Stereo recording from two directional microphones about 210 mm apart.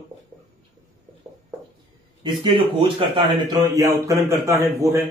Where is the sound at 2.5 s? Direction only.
25° right (ahead or behind).